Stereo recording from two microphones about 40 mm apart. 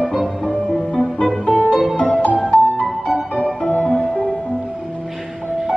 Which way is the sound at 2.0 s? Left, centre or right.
Left.